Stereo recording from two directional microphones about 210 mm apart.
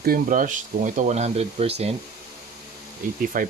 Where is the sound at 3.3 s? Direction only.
40° right (ahead or behind).